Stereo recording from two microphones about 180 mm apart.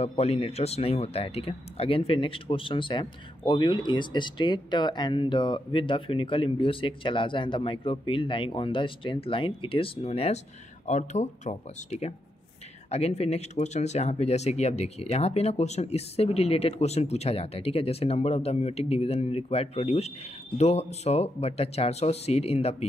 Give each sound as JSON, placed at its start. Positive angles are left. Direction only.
{"t": 0.2, "sound": "speech", "side_deg": 35}